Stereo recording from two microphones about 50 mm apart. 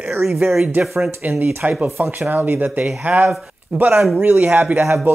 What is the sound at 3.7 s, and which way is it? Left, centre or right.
Speech, right.